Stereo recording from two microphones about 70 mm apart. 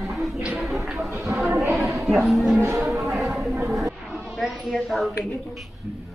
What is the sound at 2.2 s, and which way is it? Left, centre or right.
Speech, centre.